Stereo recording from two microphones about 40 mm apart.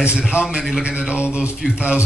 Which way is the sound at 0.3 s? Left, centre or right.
Right.